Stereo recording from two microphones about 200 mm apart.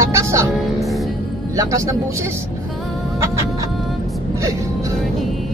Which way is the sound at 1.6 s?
15° right (ahead or behind).